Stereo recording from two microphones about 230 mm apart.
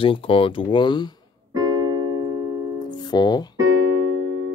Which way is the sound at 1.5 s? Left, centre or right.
Centre.